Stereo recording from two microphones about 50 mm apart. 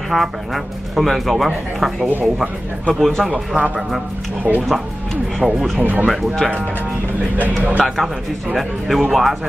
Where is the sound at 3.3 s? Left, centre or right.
Right.